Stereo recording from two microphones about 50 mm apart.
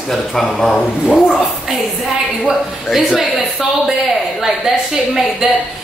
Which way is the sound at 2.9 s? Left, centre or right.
Centre.